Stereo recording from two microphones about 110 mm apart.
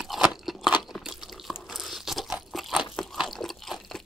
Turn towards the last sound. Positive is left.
turn(degrees=0)  # may be behind; listen again after turning